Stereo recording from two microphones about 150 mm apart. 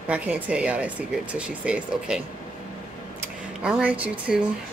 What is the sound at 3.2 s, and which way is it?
Speech, 10° right (ahead or behind).